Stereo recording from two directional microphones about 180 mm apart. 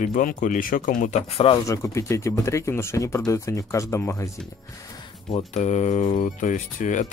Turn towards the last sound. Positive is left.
turn(degrees=45)  # may be behind; listen again after turning